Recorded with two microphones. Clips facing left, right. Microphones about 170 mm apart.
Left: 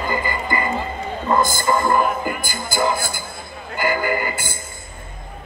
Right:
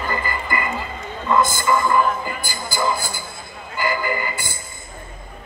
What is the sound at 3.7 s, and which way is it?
Music, 50° left (ahead or behind).